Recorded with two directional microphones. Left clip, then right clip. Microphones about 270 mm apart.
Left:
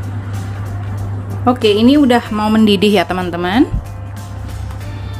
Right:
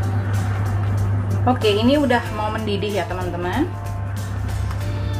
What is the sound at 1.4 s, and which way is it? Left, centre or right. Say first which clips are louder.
A woman's voice: left 6 dB; left.